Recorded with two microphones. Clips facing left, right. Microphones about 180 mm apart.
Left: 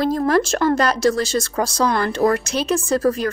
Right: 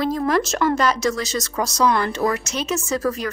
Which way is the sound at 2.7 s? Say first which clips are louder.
Left 4 dB; 55° left (ahead or behind).